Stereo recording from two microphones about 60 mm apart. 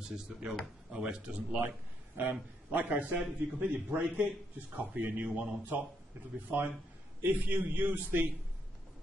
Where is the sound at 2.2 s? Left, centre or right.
Right.